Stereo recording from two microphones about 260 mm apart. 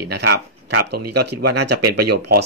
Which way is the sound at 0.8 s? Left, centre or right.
Right.